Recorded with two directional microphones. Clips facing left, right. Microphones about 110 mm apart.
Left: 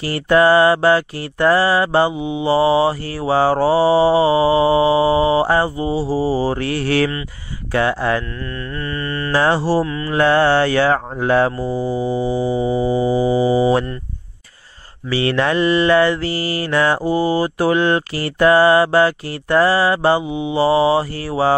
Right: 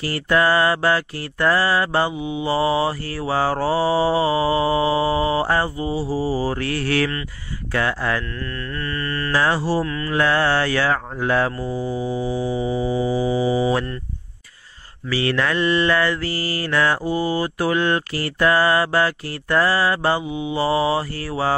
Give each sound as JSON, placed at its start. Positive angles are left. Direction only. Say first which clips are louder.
{"t": 0.0, "sound": "mantra", "louder": "left 5 dB", "side_deg": 20}
{"t": 9.3, "sound": "mantra", "louder": "left 4 dB", "side_deg": 30}
{"t": 9.8, "sound": "mantra", "louder": "left 4 dB", "side_deg": 20}
{"t": 15.0, "sound": "mantra", "louder": "left 4 dB", "side_deg": 25}
{"t": 15.6, "sound": "mantra", "louder": "left 3 dB", "side_deg": 10}
{"t": 15.9, "sound": "mantra", "louder": "left 6 dB", "side_deg": 20}